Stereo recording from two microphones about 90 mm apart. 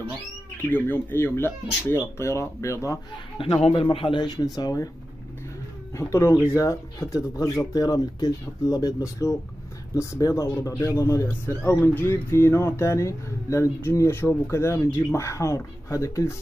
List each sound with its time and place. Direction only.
0.6 s speech: 20° left (ahead or behind)
3.3 s a man's voice: 80° left
4.2 s speech: 45° left (ahead or behind)
5.9 s speech: 30° left (ahead or behind)
11.6 s speech: 25° left (ahead or behind)